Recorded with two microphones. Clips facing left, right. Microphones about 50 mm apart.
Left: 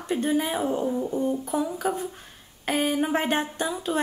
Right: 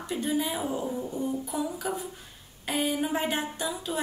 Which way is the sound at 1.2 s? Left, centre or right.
Left.